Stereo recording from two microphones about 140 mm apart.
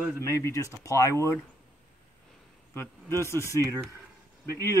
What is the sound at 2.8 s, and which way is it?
Speech, 15° left (ahead or behind).